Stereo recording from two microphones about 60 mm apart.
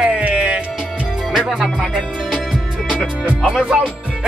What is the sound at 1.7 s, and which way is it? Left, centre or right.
Speech, centre.